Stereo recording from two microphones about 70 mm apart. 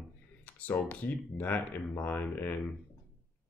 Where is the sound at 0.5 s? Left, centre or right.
Left.